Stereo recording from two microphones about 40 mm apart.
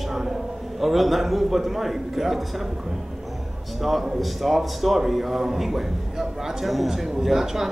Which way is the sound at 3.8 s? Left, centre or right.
Centre.